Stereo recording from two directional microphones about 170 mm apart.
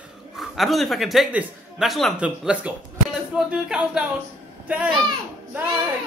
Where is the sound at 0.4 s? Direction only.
Centre (ahead or behind).